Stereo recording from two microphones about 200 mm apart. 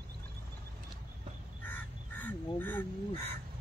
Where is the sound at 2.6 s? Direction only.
10° left (ahead or behind).